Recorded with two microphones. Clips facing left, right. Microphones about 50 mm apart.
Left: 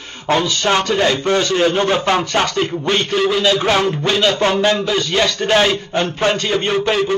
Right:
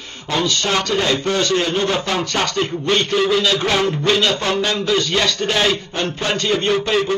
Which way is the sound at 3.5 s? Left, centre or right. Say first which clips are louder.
Left 3 dB; centre.